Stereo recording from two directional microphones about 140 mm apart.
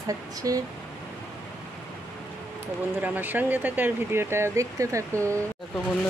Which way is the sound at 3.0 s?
15° right (ahead or behind).